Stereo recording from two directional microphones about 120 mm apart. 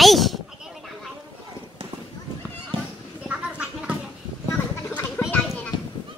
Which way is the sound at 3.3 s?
10° right (ahead or behind).